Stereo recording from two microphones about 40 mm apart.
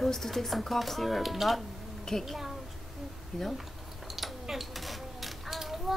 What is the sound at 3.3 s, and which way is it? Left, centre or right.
Speech, centre.